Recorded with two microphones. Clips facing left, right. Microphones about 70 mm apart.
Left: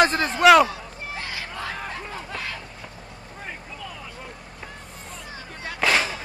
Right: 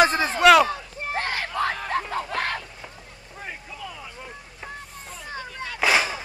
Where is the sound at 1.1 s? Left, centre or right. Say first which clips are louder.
Right 7 dB; right.